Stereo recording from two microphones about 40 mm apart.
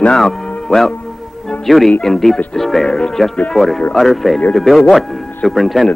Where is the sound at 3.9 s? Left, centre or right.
Centre.